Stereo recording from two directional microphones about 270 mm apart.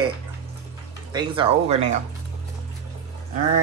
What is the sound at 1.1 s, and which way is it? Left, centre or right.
Speech, centre.